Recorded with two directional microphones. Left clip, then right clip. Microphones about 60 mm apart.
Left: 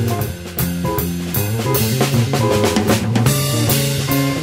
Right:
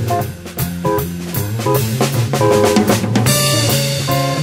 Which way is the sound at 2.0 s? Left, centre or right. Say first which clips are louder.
Right 2 dB; centre.